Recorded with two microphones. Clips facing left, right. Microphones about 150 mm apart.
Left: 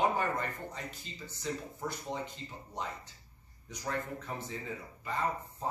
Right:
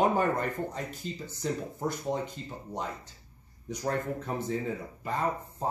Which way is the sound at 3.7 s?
45° right (ahead or behind).